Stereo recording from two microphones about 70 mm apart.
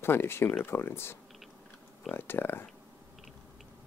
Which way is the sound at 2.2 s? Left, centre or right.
Left.